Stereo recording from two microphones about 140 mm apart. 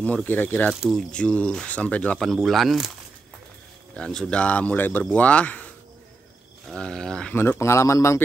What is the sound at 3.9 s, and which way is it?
Speech, 5° left (ahead or behind).